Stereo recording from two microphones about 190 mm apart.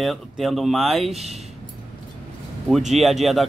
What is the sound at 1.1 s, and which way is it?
Speech, 35° right (ahead or behind).